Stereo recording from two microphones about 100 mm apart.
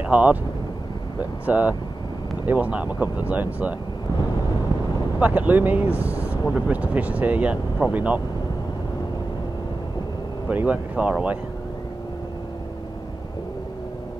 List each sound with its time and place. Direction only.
0.0 s speech: 15° right (ahead or behind)
1.4 s speech: 15° right (ahead or behind)
5.2 s speech: 15° right (ahead or behind)
10.5 s speech: 15° right (ahead or behind)